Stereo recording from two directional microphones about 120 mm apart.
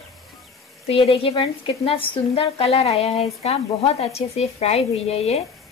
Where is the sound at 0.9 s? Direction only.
55° left (ahead or behind).